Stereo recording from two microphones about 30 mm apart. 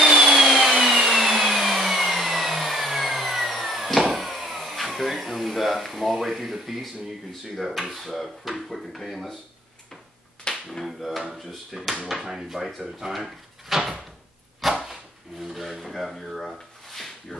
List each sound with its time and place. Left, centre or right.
0.0 s vacuum cleaner: centre
3.0 s a sound: centre
7.5 s speech: centre
10.5 s a sound: left
10.9 s speech: centre
12.2 s speech: centre
14.7 s dog: centre
15.4 s speech: centre
16.9 s a sound: centre